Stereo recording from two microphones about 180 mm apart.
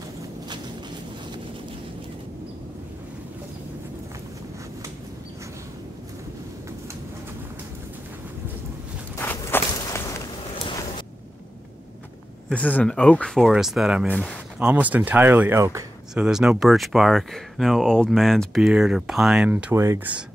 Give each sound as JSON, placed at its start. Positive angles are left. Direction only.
{"t": 9.1, "sound": "walk", "side_deg": 10}
{"t": 10.6, "sound": "a sound", "side_deg": 25}
{"t": 12.4, "sound": "speech", "side_deg": 10}
{"t": 16.3, "sound": "speech", "side_deg": -5}